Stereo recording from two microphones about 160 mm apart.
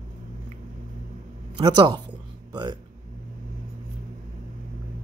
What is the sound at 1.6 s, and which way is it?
Speech, 30° right (ahead or behind).